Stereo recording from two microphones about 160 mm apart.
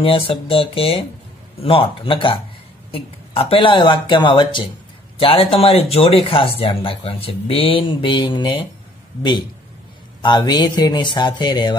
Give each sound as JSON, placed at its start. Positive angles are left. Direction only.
{"t": 0.0, "sound": "speech", "side_deg": 35}
{"t": 10.2, "sound": "speech", "side_deg": 25}